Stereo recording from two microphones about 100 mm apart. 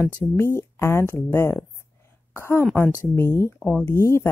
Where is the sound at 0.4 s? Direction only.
25° left (ahead or behind).